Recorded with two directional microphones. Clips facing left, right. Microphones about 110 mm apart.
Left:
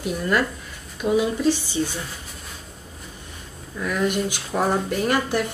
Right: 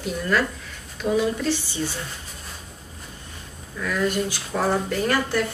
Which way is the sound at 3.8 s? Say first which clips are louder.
Left 1 dB; 15° left (ahead or behind).